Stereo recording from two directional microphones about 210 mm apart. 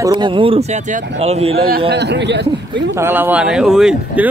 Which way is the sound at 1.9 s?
55° right (ahead or behind).